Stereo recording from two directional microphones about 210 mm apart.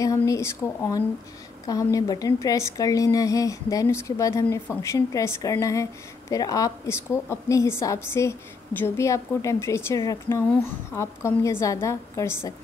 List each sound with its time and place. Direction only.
0.0 s a woman's voice: 15° left (ahead or behind)